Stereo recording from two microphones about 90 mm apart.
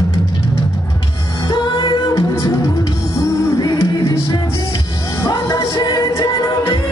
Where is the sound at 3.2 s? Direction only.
35° left (ahead or behind).